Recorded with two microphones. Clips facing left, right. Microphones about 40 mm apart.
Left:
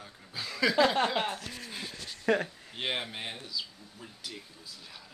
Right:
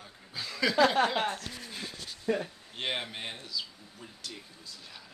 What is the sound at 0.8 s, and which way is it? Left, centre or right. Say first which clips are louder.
Speech: right 1 dB; centre.